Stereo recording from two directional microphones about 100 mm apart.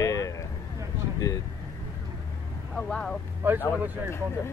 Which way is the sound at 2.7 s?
5° left (ahead or behind).